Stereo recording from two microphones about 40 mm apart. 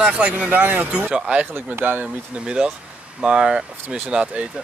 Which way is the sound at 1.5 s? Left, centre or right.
Right.